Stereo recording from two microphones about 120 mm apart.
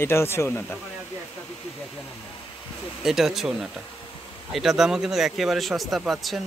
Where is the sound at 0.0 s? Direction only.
20° left (ahead or behind).